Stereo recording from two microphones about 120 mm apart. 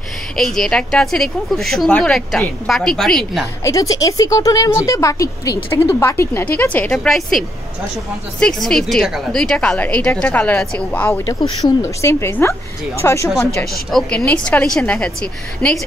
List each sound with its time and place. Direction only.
0.4 s a woman's voice: 5° left (ahead or behind)
3.6 s speech: 30° left (ahead or behind); by 7.1 s 15° left (ahead or behind)
8.4 s a woman's voice: 5° left (ahead or behind)
11.2 s speech: 30° left (ahead or behind)
13.8 s a woman's voice: 5° left (ahead or behind)